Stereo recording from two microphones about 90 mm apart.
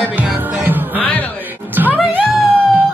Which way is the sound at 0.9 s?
20° left (ahead or behind).